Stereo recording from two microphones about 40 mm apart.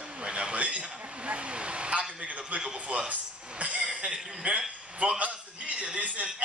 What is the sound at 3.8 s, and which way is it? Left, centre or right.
Speech, right.